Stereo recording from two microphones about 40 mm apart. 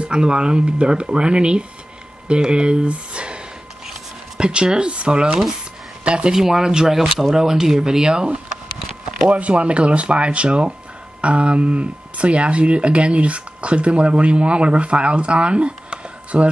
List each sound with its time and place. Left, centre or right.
0.0 s speech: right
4.4 s speech: right
6.3 s speech: centre
9.3 s speech: right